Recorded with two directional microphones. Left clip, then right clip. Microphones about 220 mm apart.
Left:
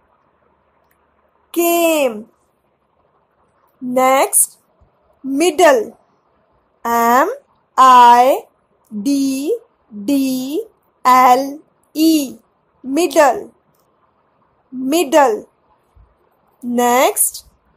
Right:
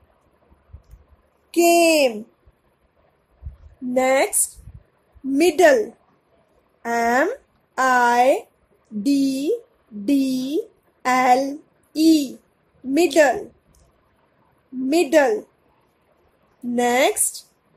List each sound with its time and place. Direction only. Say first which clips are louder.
1.5 s speech: left 1 dB; 15° left (ahead or behind)
3.9 s speech: left 5 dB; 15° left (ahead or behind)
5.3 s a woman's voice: left 3 dB; 10° left (ahead or behind)
14.9 s speech: left 4 dB; 15° left (ahead or behind)
16.7 s speech: left 5 dB; 15° left (ahead or behind)